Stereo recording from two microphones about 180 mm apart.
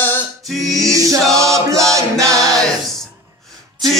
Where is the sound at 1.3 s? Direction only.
15° right (ahead or behind).